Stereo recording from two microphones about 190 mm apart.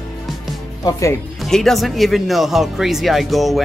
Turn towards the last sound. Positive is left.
turn(degrees=0)  # may be behind; listen again after turning